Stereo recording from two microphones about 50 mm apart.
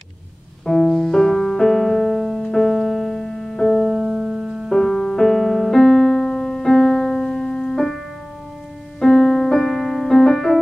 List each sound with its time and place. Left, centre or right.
0.7 s music: centre
4.0 s music: centre
4.6 s music: centre
7.5 s piano: centre
9.0 s piano: centre